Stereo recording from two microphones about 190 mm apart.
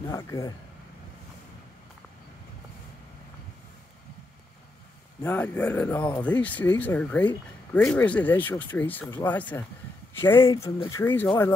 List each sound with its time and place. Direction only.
0.0 s speech: 15° left (ahead or behind)
5.2 s speech: 10° left (ahead or behind)